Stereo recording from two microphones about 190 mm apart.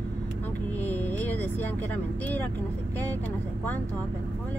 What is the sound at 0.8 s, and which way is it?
Speech, 10° left (ahead or behind).